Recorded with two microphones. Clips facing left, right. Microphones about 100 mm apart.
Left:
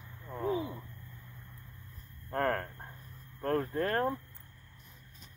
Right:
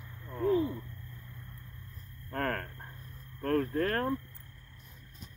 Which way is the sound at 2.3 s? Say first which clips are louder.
Left 3 dB; 25° left (ahead or behind).